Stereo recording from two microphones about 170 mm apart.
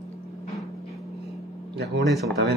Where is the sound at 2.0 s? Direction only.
Centre (ahead or behind).